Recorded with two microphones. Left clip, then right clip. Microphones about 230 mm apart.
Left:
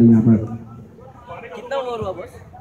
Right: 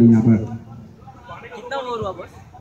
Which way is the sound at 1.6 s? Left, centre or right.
Left.